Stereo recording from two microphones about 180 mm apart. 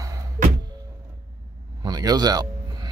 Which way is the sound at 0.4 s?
45° right (ahead or behind).